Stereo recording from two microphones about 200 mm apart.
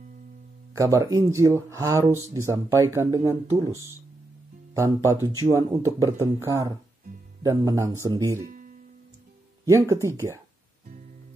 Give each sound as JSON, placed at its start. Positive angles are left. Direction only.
{"t": 0.7, "sound": "speech", "side_deg": -15}
{"t": 8.5, "sound": "music", "side_deg": -40}
{"t": 9.7, "sound": "speech", "side_deg": -15}